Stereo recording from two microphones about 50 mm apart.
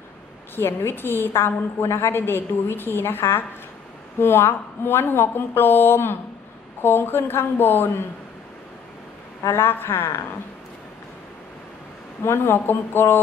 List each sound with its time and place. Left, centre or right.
0.6 s a woman's voice: left
9.5 s a woman's voice: left
12.2 s a woman's voice: left